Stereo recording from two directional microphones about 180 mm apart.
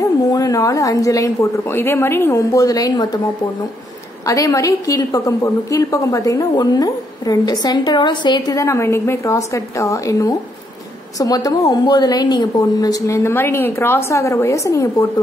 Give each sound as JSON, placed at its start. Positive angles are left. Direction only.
{"t": 0.0, "sound": "a woman's voice", "side_deg": 20}
{"t": 4.3, "sound": "a woman's voice", "side_deg": 20}